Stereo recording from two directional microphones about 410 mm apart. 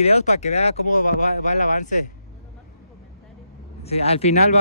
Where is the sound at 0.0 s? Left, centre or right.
Centre.